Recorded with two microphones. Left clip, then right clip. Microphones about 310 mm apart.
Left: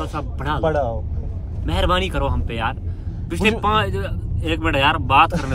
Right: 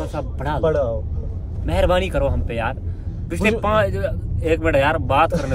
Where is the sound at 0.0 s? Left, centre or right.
Centre.